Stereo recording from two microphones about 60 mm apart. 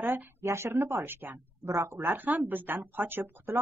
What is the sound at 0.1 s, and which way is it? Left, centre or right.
A woman's voice, right.